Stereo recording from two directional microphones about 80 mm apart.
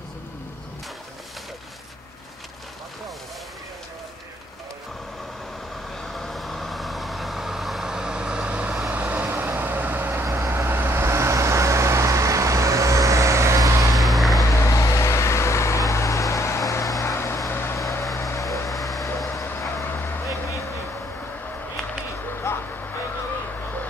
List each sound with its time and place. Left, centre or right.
5.9 s vehicle: centre; by 13.8 s right
13.9 s vehicle: centre
14.6 s vehicle: left
18.1 s vehicle: left
18.7 s vehicle: centre
19.0 s vehicle: left
19.8 s vehicle: left
22.2 s a sound: left